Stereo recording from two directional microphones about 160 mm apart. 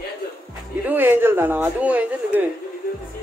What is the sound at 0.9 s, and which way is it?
A woman's voice, 15° right (ahead or behind).